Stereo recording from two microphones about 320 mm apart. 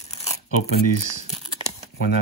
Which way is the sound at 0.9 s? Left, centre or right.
Right.